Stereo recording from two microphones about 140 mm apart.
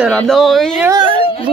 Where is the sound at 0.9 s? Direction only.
35° right (ahead or behind).